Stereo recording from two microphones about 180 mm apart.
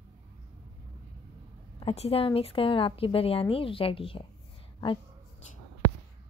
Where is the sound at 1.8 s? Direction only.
35° left (ahead or behind).